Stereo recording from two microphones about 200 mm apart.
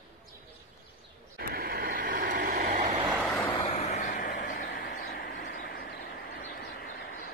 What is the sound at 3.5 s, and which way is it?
Vehicle, 35° left (ahead or behind).